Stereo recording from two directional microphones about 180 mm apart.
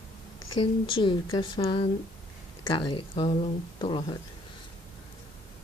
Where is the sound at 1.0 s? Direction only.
30° left (ahead or behind).